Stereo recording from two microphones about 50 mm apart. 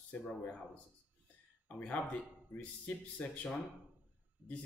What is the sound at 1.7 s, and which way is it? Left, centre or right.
A man's voice, left.